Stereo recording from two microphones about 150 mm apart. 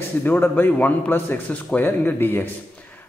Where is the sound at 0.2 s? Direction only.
15° left (ahead or behind).